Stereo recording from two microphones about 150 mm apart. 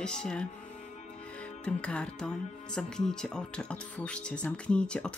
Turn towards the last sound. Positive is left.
turn(degrees=5)  # may be behind; listen again after turning